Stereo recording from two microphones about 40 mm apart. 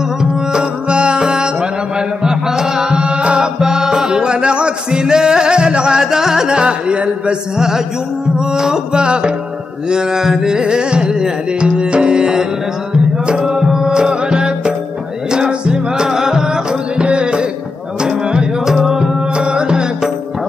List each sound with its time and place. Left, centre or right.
0.2 s music: right
7.5 s mantra: centre
8.5 s music: centre
19.3 s music: right